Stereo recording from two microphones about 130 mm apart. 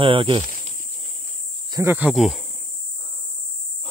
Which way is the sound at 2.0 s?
Centre (ahead or behind).